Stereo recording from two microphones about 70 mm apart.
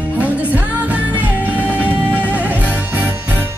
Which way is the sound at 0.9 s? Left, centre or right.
Centre.